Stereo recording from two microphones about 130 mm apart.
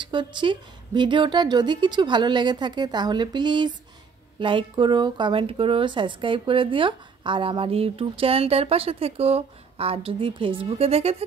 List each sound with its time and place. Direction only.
0.0 s a woman's voice: 35° right (ahead or behind); by 11.2 s 50° right (ahead or behind)